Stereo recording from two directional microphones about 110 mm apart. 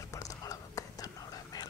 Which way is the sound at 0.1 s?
35° left (ahead or behind).